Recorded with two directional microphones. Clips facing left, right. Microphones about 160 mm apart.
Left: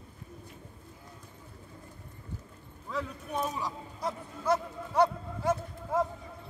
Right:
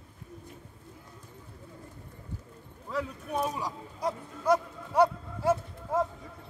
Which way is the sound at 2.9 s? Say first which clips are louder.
Right 2 dB; 10° right (ahead or behind).